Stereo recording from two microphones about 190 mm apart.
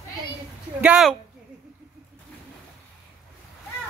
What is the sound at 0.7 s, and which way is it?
Speech, 5° right (ahead or behind).